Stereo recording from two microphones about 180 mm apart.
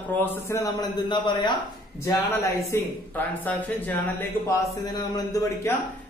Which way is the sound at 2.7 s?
10° left (ahead or behind).